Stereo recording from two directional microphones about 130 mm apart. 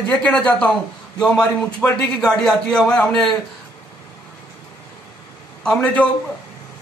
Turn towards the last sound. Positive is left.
turn(degrees=10)  # may be behind; listen again after turning